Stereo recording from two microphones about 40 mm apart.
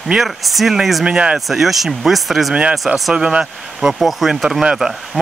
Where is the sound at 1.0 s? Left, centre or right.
Right.